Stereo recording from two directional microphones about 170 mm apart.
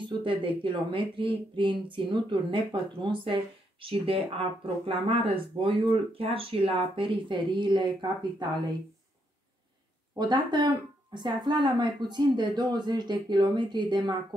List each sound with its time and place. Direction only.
0.0 s speech: 30° right (ahead or behind)
10.1 s speech: 25° right (ahead or behind)